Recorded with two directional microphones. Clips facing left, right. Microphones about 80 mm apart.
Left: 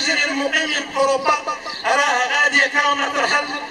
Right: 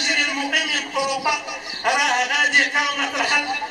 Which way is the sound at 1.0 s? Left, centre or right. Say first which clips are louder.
Left 6 dB; left.